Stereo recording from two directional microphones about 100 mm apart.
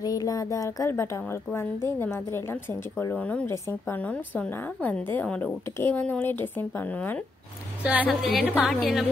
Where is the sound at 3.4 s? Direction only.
25° left (ahead or behind).